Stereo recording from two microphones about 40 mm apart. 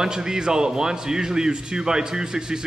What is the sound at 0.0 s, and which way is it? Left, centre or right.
A man's voice, centre.